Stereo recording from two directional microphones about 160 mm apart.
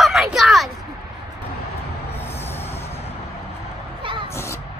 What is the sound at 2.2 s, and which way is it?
Vehicle, 15° left (ahead or behind).